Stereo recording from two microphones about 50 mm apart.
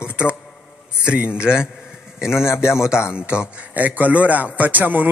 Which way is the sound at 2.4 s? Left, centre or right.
Left.